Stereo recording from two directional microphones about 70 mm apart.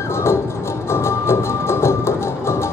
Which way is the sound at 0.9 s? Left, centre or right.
Left.